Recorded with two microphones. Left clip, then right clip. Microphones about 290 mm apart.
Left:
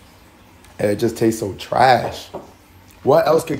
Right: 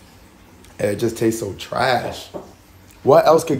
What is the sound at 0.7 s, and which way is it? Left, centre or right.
Speech, centre.